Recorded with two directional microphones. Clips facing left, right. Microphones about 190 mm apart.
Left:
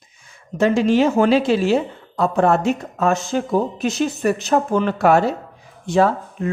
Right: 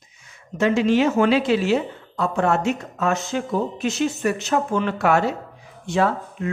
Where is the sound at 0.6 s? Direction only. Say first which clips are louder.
Left 2 dB; 35° left (ahead or behind).